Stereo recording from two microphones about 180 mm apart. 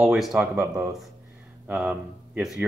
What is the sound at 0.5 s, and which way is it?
Speech, 15° right (ahead or behind).